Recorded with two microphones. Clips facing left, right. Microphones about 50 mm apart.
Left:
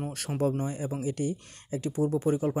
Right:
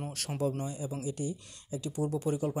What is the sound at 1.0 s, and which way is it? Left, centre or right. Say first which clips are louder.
Speech: left 5 dB; left.